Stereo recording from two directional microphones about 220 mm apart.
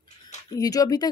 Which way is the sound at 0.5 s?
15° left (ahead or behind).